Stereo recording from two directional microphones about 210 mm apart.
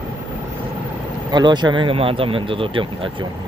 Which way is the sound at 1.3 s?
20° right (ahead or behind).